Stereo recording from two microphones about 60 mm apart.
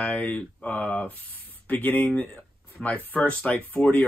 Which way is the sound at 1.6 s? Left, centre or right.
Left.